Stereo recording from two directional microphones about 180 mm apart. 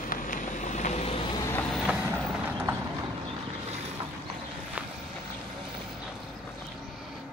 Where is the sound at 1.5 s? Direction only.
Centre (ahead or behind).